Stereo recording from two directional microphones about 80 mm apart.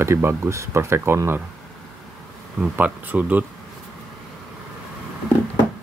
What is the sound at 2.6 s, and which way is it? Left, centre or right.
Speech, centre.